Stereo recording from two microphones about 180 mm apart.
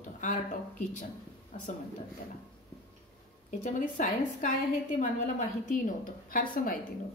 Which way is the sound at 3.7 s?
45° left (ahead or behind).